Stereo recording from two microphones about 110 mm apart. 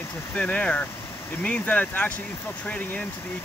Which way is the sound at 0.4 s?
10° left (ahead or behind).